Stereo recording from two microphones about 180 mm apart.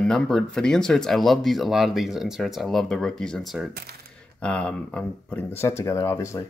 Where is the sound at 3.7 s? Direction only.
60° right (ahead or behind).